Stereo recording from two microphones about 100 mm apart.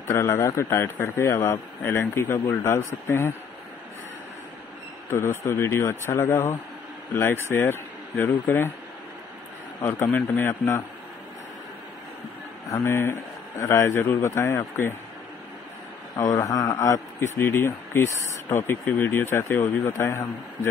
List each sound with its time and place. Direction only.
0.0 s speech: 25° left (ahead or behind)
5.1 s speech: 25° left (ahead or behind)
9.8 s speech: 25° left (ahead or behind)
12.7 s speech: 25° left (ahead or behind)
16.2 s a man's voice: 35° left (ahead or behind)